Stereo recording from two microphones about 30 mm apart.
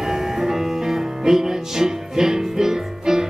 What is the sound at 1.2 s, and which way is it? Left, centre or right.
Music, centre.